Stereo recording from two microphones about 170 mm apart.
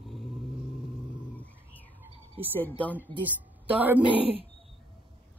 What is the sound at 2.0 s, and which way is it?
Bird, 10° right (ahead or behind).